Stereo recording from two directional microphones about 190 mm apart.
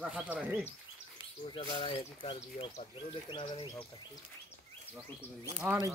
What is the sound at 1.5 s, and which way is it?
Speech, 25° left (ahead or behind).